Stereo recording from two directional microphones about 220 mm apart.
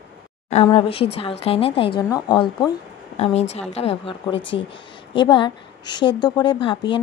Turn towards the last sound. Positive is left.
turn(degrees=20)  # may be behind; listen again after turning